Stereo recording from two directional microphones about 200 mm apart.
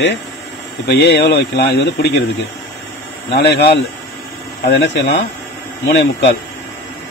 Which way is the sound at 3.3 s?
55° left (ahead or behind).